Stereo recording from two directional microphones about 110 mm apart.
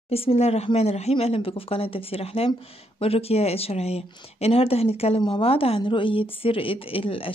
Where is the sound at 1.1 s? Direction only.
60° left (ahead or behind).